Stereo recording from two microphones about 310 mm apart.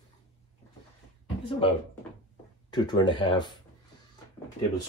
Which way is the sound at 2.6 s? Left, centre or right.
Centre.